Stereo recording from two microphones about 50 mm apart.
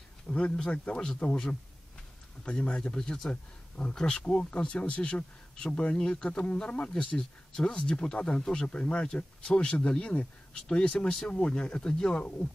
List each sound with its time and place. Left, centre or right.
0.3 s a sound: left
0.6 s speech: left
3.3 s speech: left
3.9 s speech: centre
7.2 s speech: centre